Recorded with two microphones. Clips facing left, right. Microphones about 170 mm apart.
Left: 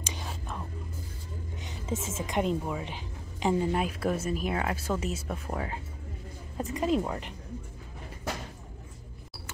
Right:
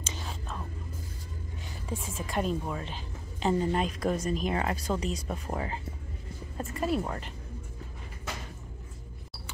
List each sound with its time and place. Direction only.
0.0 s whispering: 15° left (ahead or behind)
1.6 s a woman's voice: 20° left (ahead or behind); by 5.8 s centre (ahead or behind)
6.6 s speech: 15° left (ahead or behind)